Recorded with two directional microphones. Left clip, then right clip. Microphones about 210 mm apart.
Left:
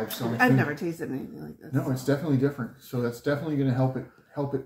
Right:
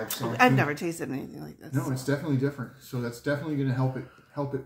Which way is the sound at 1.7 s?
Centre (ahead or behind).